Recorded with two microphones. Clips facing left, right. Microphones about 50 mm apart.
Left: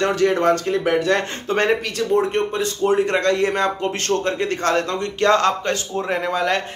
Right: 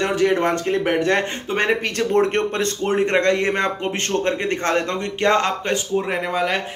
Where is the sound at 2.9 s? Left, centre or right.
Right.